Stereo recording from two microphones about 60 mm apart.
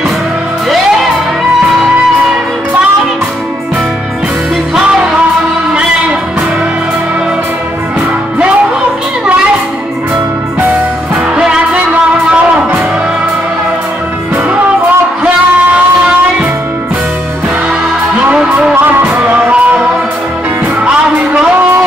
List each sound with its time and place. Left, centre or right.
11.3 s music: centre
18.6 s music: centre
20.8 s music: centre